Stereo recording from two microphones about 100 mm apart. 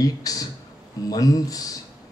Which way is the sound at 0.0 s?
40° left (ahead or behind).